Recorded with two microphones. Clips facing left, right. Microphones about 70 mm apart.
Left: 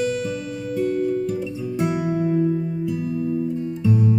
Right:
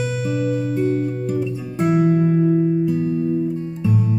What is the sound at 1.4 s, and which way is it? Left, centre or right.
Music, right.